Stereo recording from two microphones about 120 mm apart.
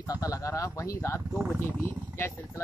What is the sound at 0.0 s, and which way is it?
Speech, 30° left (ahead or behind).